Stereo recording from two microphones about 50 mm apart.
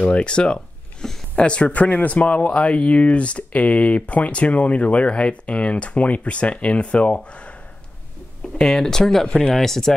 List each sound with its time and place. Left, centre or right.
0.0 s speech: left
8.5 s speech: centre